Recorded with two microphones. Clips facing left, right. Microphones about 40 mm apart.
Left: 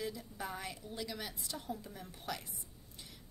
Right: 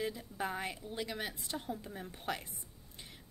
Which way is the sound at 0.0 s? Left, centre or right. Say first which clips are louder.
Right 4 dB; right.